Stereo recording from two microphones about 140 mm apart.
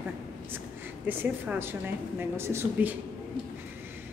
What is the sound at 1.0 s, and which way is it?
A woman's voice, 15° right (ahead or behind).